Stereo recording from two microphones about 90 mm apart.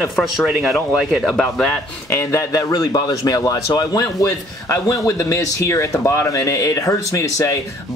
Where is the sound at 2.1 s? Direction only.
30° left (ahead or behind).